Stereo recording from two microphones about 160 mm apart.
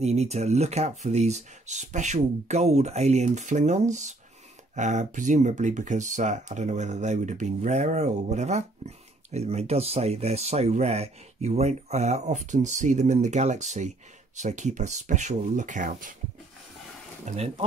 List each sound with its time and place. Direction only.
0.0 s speech: 40° right (ahead or behind)
17.2 s speech: 40° right (ahead or behind)